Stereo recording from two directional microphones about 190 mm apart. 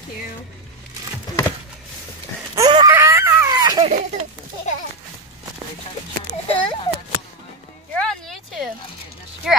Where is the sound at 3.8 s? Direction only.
35° right (ahead or behind).